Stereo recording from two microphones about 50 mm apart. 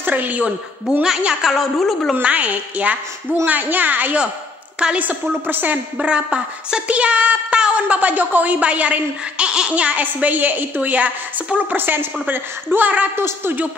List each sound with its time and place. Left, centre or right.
0.0 s speech: right
1.4 s a woman's voice: centre
2.2 s a woman's voice: right
4.7 s a woman's voice: centre
5.0 s a woman's voice: right
5.9 s a woman's voice: right
11.7 s a woman's voice: right
13.1 s speech: right